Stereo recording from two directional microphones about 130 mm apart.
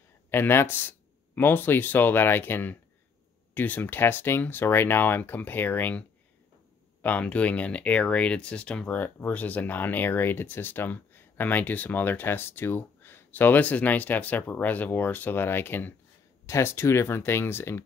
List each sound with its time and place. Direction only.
0.3 s speech: 15° left (ahead or behind)